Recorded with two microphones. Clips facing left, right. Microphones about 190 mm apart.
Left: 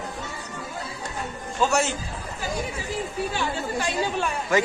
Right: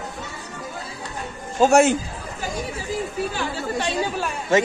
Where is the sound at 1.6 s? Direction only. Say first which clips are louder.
Right 8 dB; 50° right (ahead or behind).